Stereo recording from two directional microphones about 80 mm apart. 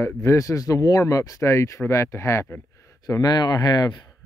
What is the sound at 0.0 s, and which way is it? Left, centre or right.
Speech, left.